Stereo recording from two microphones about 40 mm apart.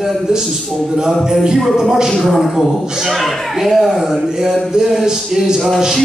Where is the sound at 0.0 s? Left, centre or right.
Centre.